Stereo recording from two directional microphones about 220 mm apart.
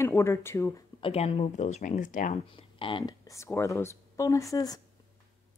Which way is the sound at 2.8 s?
20° left (ahead or behind).